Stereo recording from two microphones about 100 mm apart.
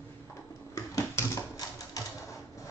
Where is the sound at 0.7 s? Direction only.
35° left (ahead or behind).